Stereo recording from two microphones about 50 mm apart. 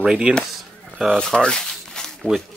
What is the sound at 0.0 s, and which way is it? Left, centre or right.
Speech, centre.